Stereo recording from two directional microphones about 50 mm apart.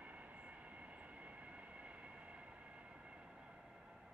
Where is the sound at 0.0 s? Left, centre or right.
Right.